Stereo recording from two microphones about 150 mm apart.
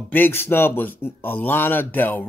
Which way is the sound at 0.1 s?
15° left (ahead or behind).